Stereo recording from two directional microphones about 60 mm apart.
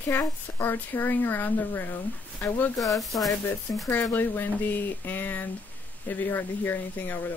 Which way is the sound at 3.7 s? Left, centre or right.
Left.